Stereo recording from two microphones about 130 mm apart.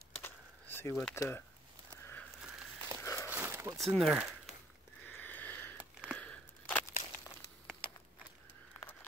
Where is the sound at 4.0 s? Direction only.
5° right (ahead or behind).